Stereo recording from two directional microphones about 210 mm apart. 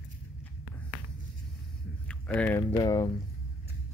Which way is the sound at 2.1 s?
5° left (ahead or behind).